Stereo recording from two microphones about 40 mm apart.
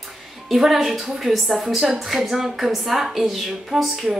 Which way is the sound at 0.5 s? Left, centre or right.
Centre.